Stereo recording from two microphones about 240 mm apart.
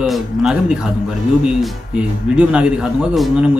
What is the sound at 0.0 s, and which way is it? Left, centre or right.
A man's voice, centre.